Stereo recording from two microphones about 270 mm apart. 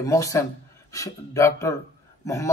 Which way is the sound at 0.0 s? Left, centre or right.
Centre.